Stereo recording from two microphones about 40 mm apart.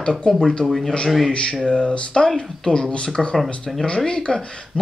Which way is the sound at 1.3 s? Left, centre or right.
Left.